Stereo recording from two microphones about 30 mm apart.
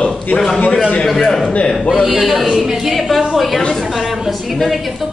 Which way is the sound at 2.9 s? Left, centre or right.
Centre.